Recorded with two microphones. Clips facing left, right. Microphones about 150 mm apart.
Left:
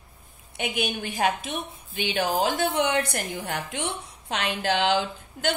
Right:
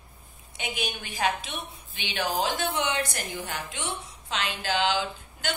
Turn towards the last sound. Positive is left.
turn(degrees=55)  # may be behind; listen again after turning